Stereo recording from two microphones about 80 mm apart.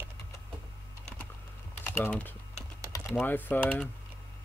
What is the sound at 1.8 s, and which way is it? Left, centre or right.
Typing, left.